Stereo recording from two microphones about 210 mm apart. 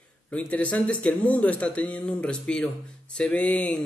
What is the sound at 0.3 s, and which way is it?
A man's voice, 5° left (ahead or behind).